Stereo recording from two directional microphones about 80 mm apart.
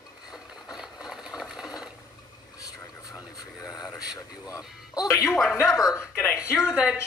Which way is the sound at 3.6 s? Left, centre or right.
Left.